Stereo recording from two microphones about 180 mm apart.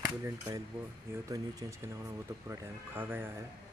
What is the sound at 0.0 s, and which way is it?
Speech, 15° right (ahead or behind).